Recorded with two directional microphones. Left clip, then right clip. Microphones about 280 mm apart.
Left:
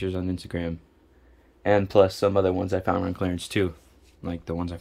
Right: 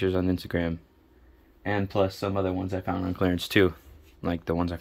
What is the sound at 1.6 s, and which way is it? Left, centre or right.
Speech, centre.